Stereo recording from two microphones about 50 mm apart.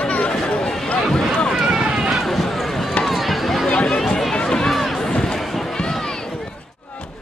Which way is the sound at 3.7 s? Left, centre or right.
Left.